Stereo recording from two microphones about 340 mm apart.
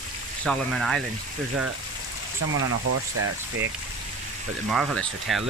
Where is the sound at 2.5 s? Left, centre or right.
Right.